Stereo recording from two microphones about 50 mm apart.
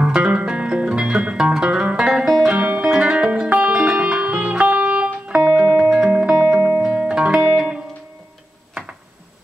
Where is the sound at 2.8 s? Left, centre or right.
Centre.